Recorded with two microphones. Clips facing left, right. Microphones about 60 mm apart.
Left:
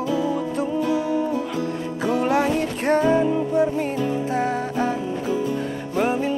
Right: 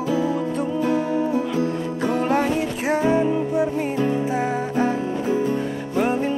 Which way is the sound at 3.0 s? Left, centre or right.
Centre.